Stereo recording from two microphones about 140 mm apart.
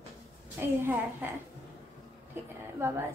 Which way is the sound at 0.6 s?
15° right (ahead or behind).